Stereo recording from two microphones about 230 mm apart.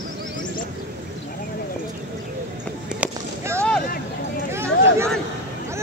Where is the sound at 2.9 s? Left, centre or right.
Centre.